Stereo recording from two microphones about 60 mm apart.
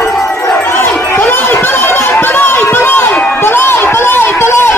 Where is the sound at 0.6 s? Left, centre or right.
Left.